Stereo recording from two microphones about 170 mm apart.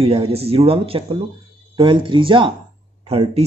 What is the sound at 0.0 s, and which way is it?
Speech, 35° right (ahead or behind).